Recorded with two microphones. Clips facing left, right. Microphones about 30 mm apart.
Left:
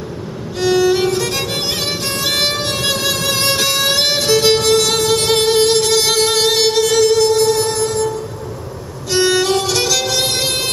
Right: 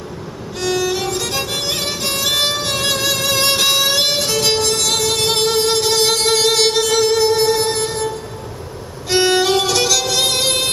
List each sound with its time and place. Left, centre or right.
0.6 s music: centre
5.9 s music: centre
6.2 s music: centre
6.6 s music: centre
7.2 s music: right
9.1 s violin: right
9.7 s music: centre